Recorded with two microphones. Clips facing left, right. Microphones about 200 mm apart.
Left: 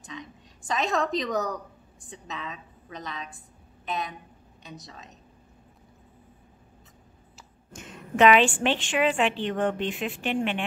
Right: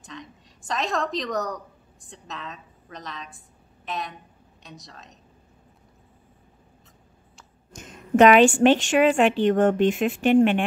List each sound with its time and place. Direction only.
0.0 s a woman's voice: centre (ahead or behind)
7.7 s a woman's voice: 45° right (ahead or behind)